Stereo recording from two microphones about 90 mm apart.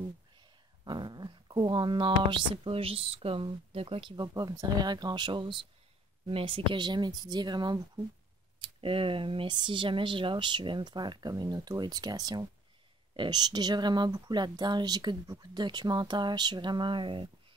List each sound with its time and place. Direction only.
0.4 s speech: 55° right (ahead or behind); by 4.2 s 80° right
4.2 s speech: 45° right (ahead or behind); by 5.6 s 60° right (ahead or behind)
6.2 s speech: 75° right (ahead or behind); by 8.0 s 50° right (ahead or behind)
8.5 s speech: 80° right; by 12.4 s 45° right (ahead or behind)
13.1 s speech: 60° right (ahead or behind)